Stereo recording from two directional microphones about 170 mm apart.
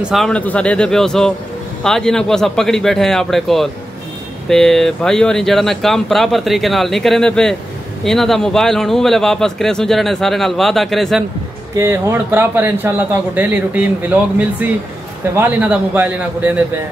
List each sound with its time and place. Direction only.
0.1 s speech: 5° left (ahead or behind)
11.7 s a man's voice: 15° right (ahead or behind)